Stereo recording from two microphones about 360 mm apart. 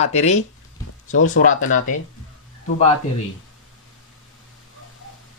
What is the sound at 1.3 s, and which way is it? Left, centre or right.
Speech, left.